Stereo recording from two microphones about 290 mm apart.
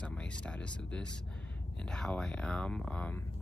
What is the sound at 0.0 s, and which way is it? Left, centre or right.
Speech, centre.